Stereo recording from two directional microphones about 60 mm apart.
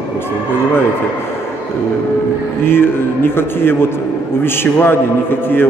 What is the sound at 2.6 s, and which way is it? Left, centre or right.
A man's voice, left.